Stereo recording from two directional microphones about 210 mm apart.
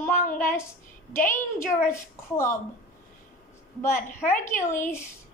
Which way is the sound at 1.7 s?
10° left (ahead or behind).